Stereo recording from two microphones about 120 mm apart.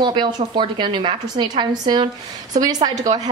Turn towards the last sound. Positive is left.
turn(degrees=-80)